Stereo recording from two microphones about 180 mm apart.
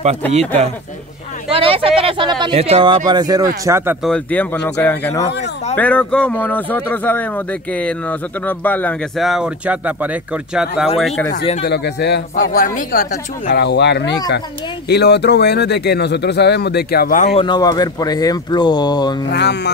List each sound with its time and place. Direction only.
0.2 s speech: 10° left (ahead or behind)
1.5 s speech: 30° right (ahead or behind); by 4.0 s 15° right (ahead or behind)
4.0 s speech: 5° left (ahead or behind)
11.6 s speech: 65° left (ahead or behind)
12.4 s speech: 50° left (ahead or behind); by 19.2 s 25° left (ahead or behind)
19.2 s speech: 70° left (ahead or behind)